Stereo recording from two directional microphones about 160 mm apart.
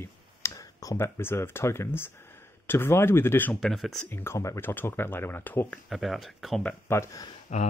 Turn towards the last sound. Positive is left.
turn(degrees=45)  # may be behind; listen again after turning